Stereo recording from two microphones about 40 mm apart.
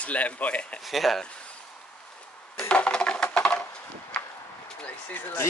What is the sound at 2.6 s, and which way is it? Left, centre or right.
Music, left.